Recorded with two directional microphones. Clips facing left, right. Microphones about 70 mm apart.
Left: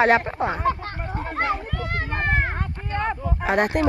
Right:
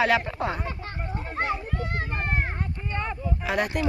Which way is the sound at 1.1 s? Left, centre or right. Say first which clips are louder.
Left 4 dB; left.